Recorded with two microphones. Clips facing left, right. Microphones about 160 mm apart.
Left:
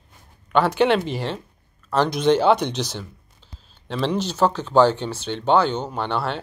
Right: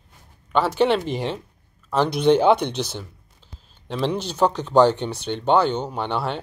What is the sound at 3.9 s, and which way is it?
Speech, 10° right (ahead or behind).